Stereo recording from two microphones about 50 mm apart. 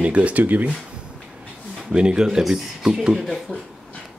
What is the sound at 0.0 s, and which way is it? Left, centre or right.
Speech, right.